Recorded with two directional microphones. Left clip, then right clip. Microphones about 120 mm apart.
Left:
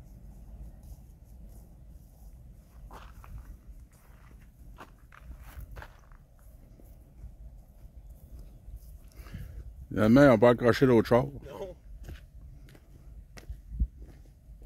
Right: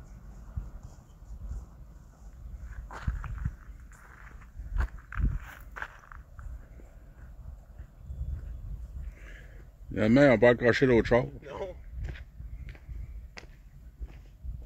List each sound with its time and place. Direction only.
2.9 s walk: 5° right (ahead or behind)
5.1 s walk: 35° left (ahead or behind)
9.9 s speech: 90° left